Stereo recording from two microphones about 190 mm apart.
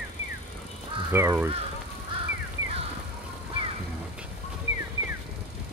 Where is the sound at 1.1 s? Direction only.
10° right (ahead or behind).